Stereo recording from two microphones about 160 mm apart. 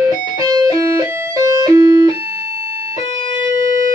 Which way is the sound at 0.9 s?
20° right (ahead or behind).